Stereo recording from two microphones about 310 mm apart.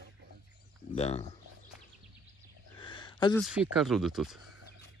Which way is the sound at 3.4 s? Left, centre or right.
Centre.